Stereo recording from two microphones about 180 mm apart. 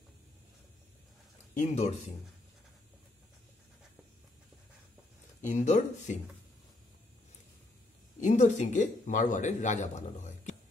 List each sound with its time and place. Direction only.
1.5 s speech: 40° left (ahead or behind)
5.5 s speech: 40° left (ahead or behind)
8.2 s speech: 45° left (ahead or behind)